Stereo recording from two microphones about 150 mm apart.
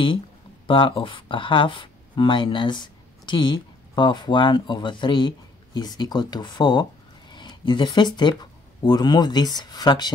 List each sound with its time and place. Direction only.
0.7 s speech: 35° left (ahead or behind)